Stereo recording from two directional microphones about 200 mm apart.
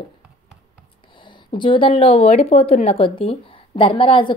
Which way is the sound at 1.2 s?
25° left (ahead or behind).